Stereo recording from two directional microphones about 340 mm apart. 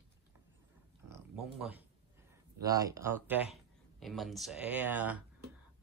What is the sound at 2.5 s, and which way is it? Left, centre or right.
Speech, centre.